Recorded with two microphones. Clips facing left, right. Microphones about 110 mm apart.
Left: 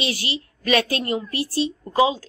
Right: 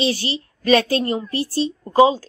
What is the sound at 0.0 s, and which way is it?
A woman's voice, 30° right (ahead or behind).